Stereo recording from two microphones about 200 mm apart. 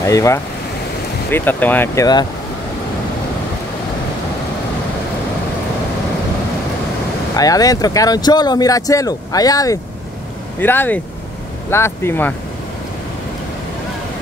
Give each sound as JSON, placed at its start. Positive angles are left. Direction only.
{"t": 0.0, "sound": "speech", "side_deg": 15}
{"t": 7.3, "sound": "speech", "side_deg": 20}